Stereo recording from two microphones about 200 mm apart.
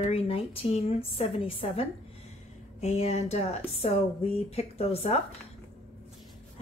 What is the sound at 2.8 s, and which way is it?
A woman's voice, 35° left (ahead or behind).